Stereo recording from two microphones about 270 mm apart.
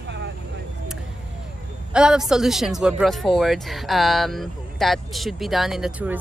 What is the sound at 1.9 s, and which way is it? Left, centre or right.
Speech, centre.